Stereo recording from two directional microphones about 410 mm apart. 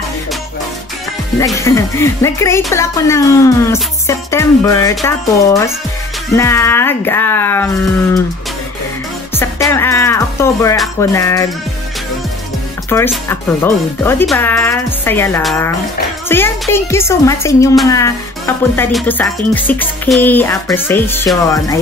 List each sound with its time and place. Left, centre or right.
1.4 s speech: centre
9.3 s speech: centre
12.9 s speech: centre